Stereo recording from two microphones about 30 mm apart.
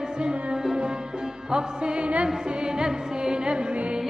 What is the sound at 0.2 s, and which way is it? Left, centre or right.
Music, right.